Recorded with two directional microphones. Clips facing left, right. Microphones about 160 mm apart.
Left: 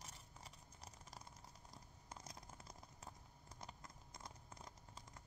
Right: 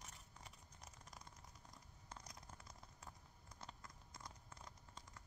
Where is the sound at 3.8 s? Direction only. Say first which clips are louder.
Left 1 dB; 20° left (ahead or behind).